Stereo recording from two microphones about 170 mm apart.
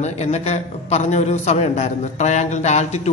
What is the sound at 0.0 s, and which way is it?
A man's voice, 40° left (ahead or behind).